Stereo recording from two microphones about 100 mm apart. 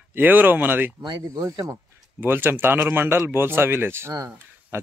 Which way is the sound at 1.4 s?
30° right (ahead or behind).